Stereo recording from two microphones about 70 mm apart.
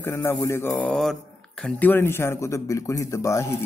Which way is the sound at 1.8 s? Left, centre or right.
Left.